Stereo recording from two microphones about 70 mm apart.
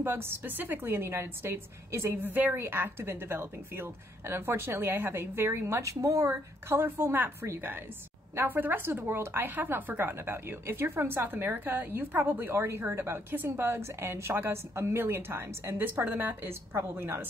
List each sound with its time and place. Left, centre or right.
0.0 s a woman's voice: right
2.2 s a woman's voice: right
6.7 s a woman's voice: right